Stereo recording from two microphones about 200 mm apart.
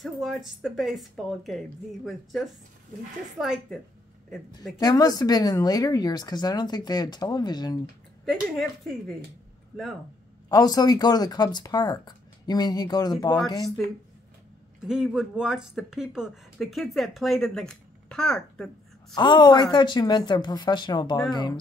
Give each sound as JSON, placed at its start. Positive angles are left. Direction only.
{"t": 0.0, "sound": "speech", "side_deg": 0}
{"t": 4.7, "sound": "speech", "side_deg": 20}
{"t": 8.3, "sound": "speech", "side_deg": 0}
{"t": 10.5, "sound": "speech", "side_deg": 20}
{"t": 14.9, "sound": "speech", "side_deg": -5}
{"t": 19.1, "sound": "speech", "side_deg": 20}